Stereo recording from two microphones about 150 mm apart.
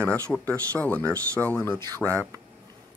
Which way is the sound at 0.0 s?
10° left (ahead or behind).